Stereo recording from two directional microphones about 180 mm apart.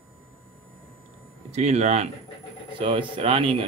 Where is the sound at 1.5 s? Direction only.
40° right (ahead or behind).